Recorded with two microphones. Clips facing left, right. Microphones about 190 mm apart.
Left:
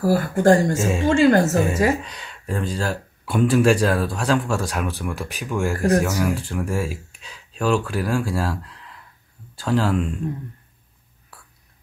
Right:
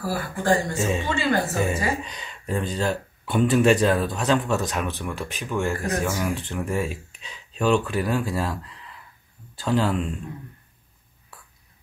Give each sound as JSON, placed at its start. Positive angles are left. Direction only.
{"t": 0.0, "sound": "a woman's voice", "side_deg": 45}
{"t": 0.7, "sound": "speech", "side_deg": 0}
{"t": 1.0, "sound": "a woman's voice", "side_deg": 45}
{"t": 2.0, "sound": "speech", "side_deg": 0}